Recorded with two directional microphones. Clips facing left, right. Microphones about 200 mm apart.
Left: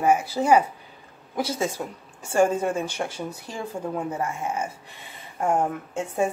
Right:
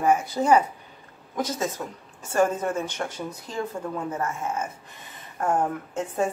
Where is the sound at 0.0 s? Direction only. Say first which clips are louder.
Left 1 dB; 5° left (ahead or behind).